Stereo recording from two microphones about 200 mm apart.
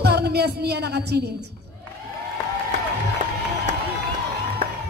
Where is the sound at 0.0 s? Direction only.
55° right (ahead or behind).